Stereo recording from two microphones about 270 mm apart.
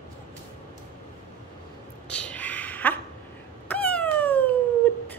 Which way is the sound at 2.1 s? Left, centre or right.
Centre.